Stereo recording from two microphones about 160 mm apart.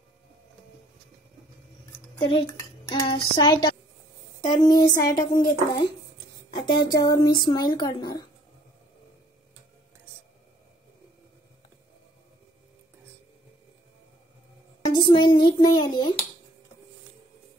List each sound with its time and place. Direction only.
2.1 s dishes: 35° left (ahead or behind)
2.9 s speech: 30° left (ahead or behind)
6.5 s speech: 25° left (ahead or behind)
15.0 s speech: 30° left (ahead or behind)